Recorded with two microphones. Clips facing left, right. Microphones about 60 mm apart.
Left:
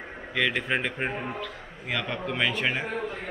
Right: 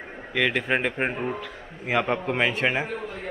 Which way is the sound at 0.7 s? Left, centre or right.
Centre.